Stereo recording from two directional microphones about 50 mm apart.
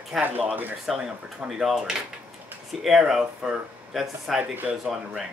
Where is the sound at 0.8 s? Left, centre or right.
Centre.